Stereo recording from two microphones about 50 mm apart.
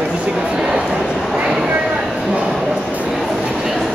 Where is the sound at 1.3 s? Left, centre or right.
Centre.